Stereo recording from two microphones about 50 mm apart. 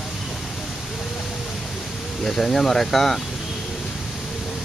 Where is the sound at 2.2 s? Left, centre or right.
Centre.